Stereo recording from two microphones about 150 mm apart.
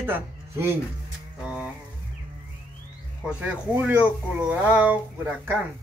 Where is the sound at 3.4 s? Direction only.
10° right (ahead or behind).